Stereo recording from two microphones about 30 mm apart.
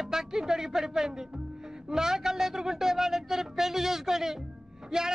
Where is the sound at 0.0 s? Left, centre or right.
Centre.